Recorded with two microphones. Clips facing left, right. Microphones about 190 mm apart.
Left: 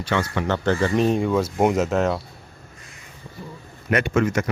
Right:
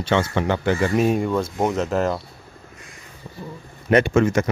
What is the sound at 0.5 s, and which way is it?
Speech, 10° right (ahead or behind).